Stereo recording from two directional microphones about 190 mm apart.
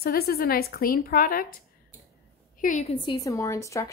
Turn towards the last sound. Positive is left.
turn(degrees=15)  # may be behind; listen again after turning